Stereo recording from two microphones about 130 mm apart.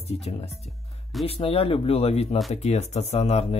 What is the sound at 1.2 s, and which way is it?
Speech, 50° left (ahead or behind).